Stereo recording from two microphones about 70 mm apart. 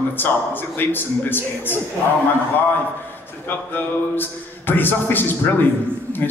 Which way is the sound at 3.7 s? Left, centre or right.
Left.